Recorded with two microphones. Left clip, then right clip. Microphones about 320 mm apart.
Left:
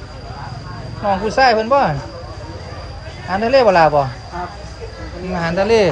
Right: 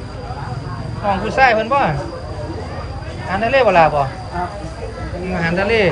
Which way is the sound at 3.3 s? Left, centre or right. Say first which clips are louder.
Left 1 dB; centre.